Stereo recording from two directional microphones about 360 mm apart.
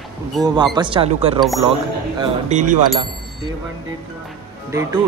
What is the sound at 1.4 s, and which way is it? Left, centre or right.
Speech, centre.